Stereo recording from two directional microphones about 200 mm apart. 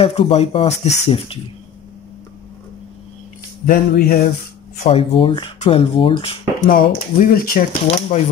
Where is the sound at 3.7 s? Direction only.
45° left (ahead or behind).